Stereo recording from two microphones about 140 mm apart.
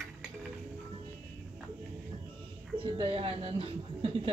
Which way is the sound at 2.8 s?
40° right (ahead or behind).